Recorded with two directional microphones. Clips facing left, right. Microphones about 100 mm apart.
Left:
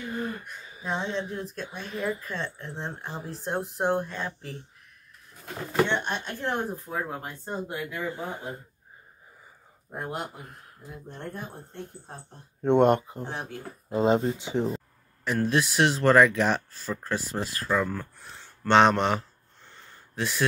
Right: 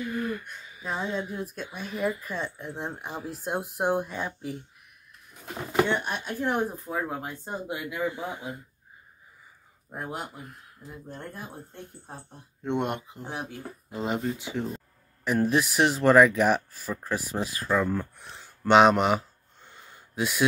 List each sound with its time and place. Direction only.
0.0 s a sound: 30° left (ahead or behind)
0.8 s speech: 5° right (ahead or behind)
8.1 s speech: 40° left (ahead or behind)
9.8 s speech: centre (ahead or behind)
12.6 s speech: 45° left (ahead or behind)
13.2 s speech: 10° right (ahead or behind)
13.8 s speech: 25° left (ahead or behind)
15.2 s speech: 10° right (ahead or behind)